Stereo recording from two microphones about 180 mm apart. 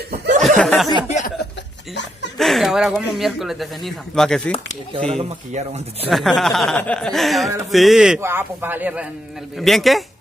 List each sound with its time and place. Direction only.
0.6 s a sound: 5° left (ahead or behind)
1.0 s chuckle: 40° left (ahead or behind)
2.3 s speech: centre (ahead or behind)
4.9 s speech: 35° right (ahead or behind)
6.0 s speech: centre (ahead or behind)